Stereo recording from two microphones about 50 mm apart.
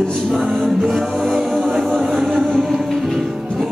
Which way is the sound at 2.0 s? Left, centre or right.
Centre.